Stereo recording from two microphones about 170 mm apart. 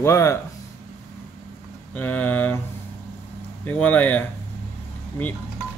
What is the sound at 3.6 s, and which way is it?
Speech, 10° left (ahead or behind).